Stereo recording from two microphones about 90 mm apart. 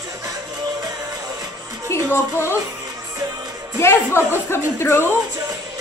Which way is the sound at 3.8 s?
25° left (ahead or behind).